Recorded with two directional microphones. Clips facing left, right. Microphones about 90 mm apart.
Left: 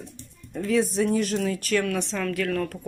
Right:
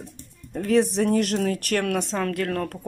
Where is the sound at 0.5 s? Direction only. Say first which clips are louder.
Right 3 dB; 55° right (ahead or behind).